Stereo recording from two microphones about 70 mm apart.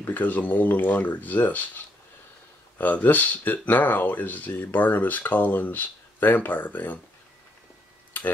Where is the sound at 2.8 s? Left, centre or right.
Left.